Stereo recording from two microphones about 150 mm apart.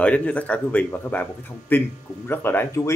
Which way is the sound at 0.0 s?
10° left (ahead or behind).